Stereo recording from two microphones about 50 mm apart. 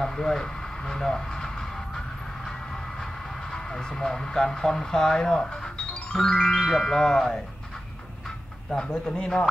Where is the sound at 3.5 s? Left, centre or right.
Centre.